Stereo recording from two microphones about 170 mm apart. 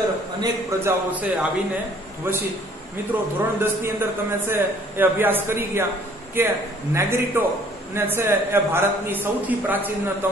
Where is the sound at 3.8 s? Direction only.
15° right (ahead or behind).